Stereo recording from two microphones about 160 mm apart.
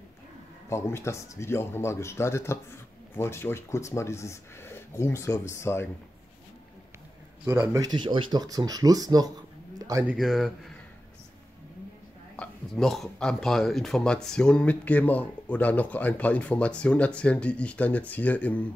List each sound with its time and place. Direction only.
0.7 s speech: 15° left (ahead or behind)
7.4 s speech: 20° right (ahead or behind)
9.8 s a sound: 20° right (ahead or behind)
10.0 s speech: centre (ahead or behind)
12.4 s speech: centre (ahead or behind)